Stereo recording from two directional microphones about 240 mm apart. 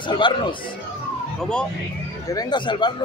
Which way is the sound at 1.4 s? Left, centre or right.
Centre.